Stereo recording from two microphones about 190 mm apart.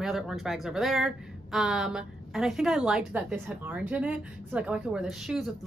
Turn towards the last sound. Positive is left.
turn(degrees=0)  # may be behind; listen again after turning